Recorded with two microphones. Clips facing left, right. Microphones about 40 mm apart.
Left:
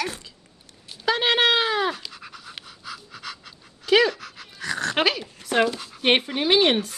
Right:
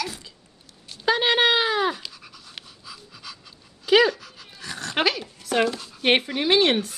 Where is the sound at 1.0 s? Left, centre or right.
Centre.